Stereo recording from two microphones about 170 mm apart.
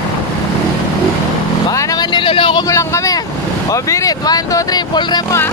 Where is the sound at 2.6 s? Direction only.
20° left (ahead or behind).